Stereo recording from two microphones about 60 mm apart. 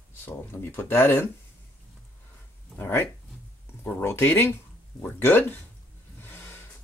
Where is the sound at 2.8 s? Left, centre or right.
Left.